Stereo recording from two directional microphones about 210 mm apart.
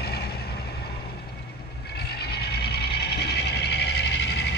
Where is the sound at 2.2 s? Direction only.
50° left (ahead or behind).